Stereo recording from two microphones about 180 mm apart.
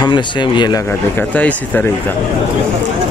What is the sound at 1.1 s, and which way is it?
Speech, 10° left (ahead or behind).